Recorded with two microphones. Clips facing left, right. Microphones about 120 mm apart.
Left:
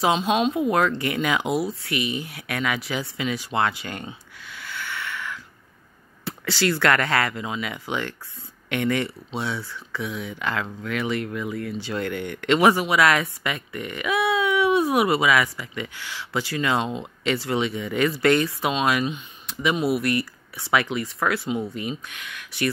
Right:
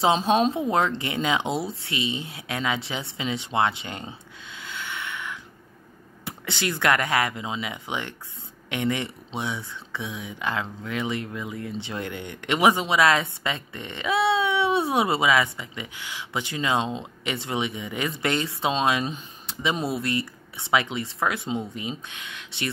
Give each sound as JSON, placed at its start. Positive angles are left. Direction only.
{"t": 0.0, "sound": "speech", "side_deg": -30}
{"t": 4.6, "sound": "snort", "side_deg": -20}
{"t": 6.2, "sound": "speech", "side_deg": -20}